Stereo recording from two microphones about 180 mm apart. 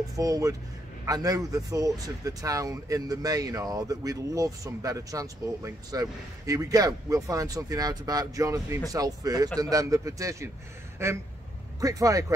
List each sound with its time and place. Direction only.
0.1 s speech: 20° right (ahead or behind)
11.0 s a sound: 15° right (ahead or behind)
11.8 s speech: 20° right (ahead or behind)